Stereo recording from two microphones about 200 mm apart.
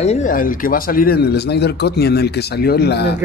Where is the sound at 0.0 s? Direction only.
35° left (ahead or behind); by 3.2 s 55° left (ahead or behind).